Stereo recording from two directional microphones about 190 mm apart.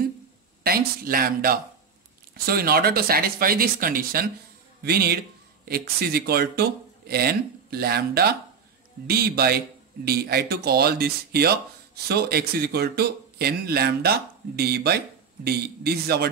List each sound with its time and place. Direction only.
0.7 s speech: 50° right (ahead or behind)